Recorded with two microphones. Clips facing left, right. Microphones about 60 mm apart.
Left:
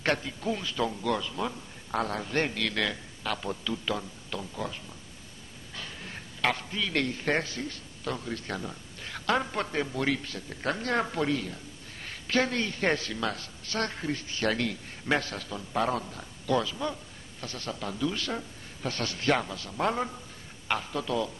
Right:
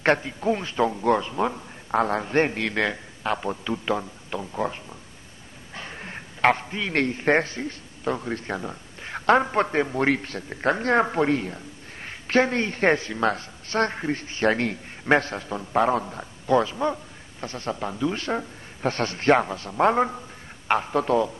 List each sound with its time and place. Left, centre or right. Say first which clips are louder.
0.0 s a man's voice: right 7 dB; right
5.8 s a man's voice: right 5 dB; right